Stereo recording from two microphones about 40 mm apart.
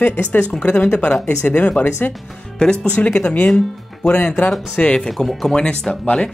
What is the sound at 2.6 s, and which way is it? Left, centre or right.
Speech, centre.